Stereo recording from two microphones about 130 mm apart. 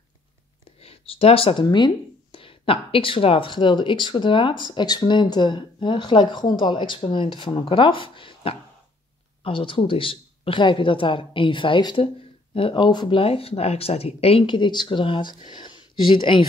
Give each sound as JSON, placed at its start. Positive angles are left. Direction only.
{"t": 0.7, "sound": "speech", "side_deg": 45}